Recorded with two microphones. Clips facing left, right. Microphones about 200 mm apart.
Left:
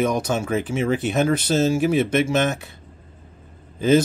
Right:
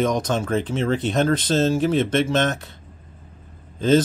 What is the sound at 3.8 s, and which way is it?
Speech, 10° left (ahead or behind).